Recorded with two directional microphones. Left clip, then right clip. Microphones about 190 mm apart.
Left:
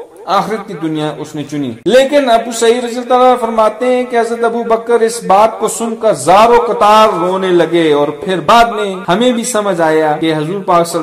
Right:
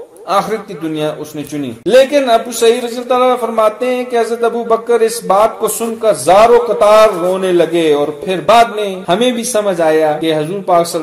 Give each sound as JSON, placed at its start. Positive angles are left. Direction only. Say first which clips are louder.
{"t": 0.3, "sound": "a man's voice", "louder": "left 1 dB", "side_deg": 25}